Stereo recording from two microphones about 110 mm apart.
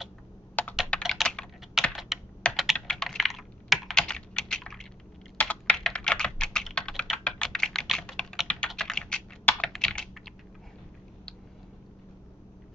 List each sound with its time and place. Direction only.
0.6 s computer keyboard: 15° left (ahead or behind)
1.0 s computer keyboard: centre (ahead or behind)